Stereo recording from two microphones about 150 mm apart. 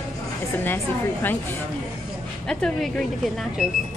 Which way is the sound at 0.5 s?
15° left (ahead or behind).